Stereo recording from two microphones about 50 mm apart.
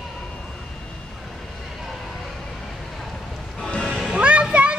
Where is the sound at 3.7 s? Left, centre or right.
Centre.